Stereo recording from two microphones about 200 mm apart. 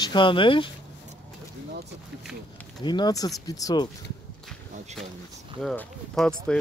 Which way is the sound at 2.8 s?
20° left (ahead or behind).